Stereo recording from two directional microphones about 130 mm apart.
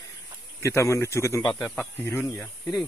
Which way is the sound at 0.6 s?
20° left (ahead or behind).